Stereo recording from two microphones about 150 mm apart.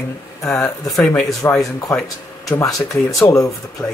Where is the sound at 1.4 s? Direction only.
15° left (ahead or behind).